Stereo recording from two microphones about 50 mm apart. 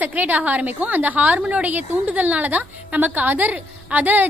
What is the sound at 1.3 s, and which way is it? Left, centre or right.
Speech, centre.